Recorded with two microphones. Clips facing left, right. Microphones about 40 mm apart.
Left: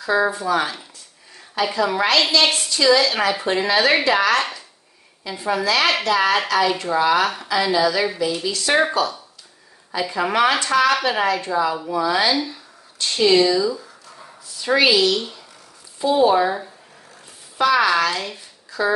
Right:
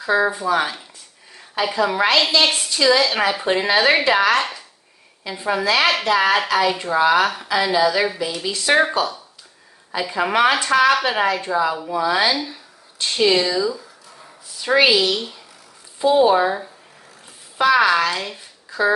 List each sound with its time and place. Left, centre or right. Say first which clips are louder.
0.1 s speech: right 1 dB; right
0.5 s speech: right 1 dB; centre
4.4 s a sound: right 1 dB; centre
5.3 s speech: right 1 dB; centre
9.9 s speech: right 1 dB; centre
12.3 s speech: left 1 dB; centre
17.6 s speech: right 1 dB; centre
18.7 s a sound: right 2 dB; right